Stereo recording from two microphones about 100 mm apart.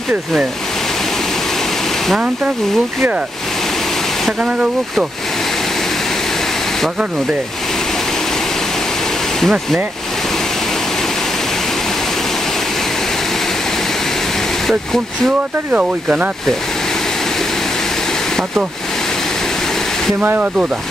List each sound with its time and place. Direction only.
2.0 s speech: centre (ahead or behind)
4.3 s speech: 10° right (ahead or behind)
9.4 s speech: centre (ahead or behind)
14.7 s speech: 5° left (ahead or behind)
15.7 s speech: 15° right (ahead or behind)
20.2 s speech: 15° right (ahead or behind)